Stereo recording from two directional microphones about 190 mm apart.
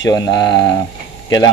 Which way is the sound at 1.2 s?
20° left (ahead or behind).